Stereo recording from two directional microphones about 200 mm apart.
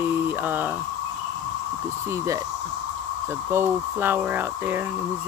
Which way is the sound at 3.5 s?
10° right (ahead or behind).